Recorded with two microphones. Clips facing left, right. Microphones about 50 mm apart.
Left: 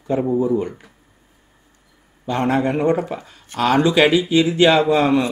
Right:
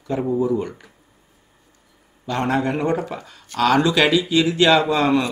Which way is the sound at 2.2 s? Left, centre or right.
Left.